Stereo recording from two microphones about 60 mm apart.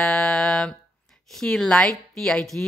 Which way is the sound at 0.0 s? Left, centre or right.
Centre.